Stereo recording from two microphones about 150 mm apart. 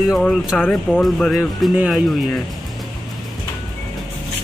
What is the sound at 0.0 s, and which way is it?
Speech, centre (ahead or behind).